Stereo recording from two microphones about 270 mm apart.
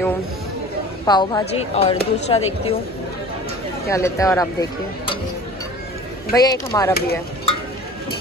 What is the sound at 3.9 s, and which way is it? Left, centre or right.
Speech, centre.